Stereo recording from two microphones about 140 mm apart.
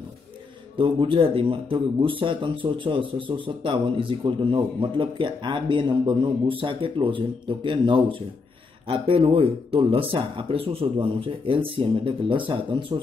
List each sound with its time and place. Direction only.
0.7 s speech: 40° right (ahead or behind)